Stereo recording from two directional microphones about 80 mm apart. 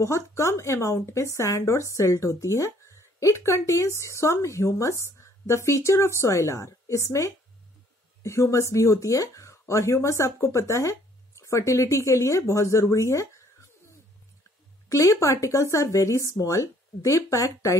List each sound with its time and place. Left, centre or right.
0.0 s speech: left
14.9 s speech: left